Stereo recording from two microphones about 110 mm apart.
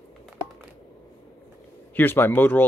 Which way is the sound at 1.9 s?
20° left (ahead or behind).